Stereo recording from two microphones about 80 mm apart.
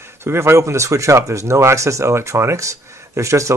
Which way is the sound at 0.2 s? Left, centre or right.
Right.